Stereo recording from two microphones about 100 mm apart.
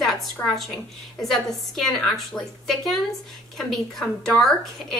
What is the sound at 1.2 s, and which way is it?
A woman's voice, centre (ahead or behind).